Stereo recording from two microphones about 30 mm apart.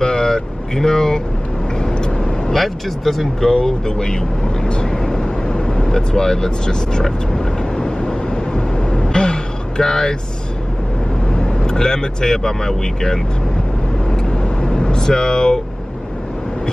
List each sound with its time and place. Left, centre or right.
0.0 s vehicle: left
2.5 s speech: centre
3.6 s speech: left
4.8 s vehicle: left
8.1 s a sound: left
11.3 s speech: left
14.2 s vehicle: left